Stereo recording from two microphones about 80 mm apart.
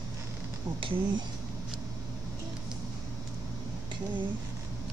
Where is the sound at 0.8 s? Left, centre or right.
Right.